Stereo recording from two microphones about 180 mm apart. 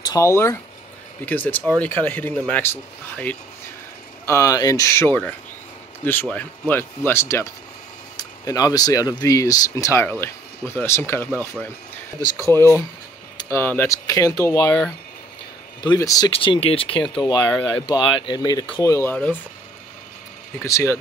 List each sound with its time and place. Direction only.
0.0 s speech: 20° left (ahead or behind)
15.8 s speech: 20° left (ahead or behind)
16.3 s speech: 30° left (ahead or behind); by 19.4 s 10° left (ahead or behind)
20.5 s speech: 15° left (ahead or behind)